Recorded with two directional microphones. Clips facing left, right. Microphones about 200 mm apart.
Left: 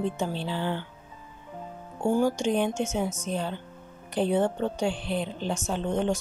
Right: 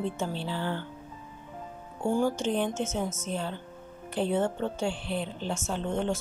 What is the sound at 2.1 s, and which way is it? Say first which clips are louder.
Speech: left 2 dB; 10° left (ahead or behind).